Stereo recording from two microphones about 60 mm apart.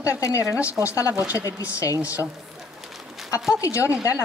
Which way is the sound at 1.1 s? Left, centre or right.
Right.